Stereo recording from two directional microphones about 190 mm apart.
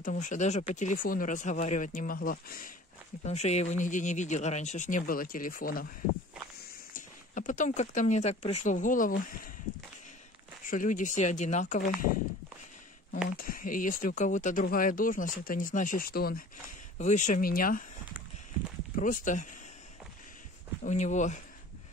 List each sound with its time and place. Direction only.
0.0 s speech: 45° left (ahead or behind)
3.3 s speech: 35° left (ahead or behind)
6.9 s speech: 45° left (ahead or behind)
10.6 s speech: 45° left (ahead or behind)
13.4 s speech: 45° left (ahead or behind)
17.0 s speech: 40° left (ahead or behind)
18.9 s speech: 45° left (ahead or behind)
20.8 s speech: 40° left (ahead or behind)